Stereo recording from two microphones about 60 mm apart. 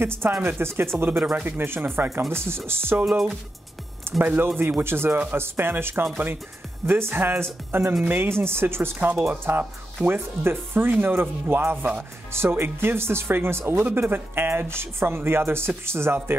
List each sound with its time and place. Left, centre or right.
0.0 s speech: right
1.2 s speech: right
1.6 s speech: right
4.2 s speech: right